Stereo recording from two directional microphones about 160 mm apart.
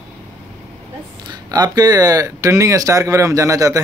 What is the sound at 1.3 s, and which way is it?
Speech, 25° right (ahead or behind).